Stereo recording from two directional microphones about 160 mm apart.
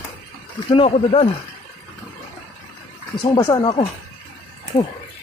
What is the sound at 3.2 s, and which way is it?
Speech, 25° left (ahead or behind).